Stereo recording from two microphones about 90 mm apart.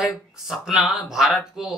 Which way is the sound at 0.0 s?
5° right (ahead or behind).